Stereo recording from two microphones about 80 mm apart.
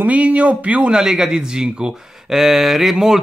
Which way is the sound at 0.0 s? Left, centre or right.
Centre.